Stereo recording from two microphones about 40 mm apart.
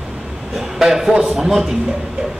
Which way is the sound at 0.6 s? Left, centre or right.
Centre.